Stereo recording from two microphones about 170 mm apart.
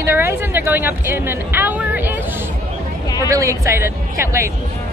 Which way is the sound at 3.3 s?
20° right (ahead or behind).